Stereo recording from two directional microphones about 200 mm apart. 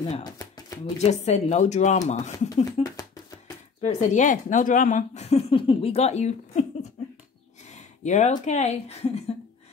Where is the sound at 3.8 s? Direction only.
35° left (ahead or behind).